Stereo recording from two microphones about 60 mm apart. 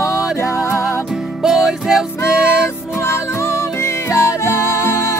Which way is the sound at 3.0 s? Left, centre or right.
Left.